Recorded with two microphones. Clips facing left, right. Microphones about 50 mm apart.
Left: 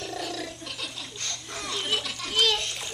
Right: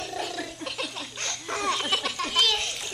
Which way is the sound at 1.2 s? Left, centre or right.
Right.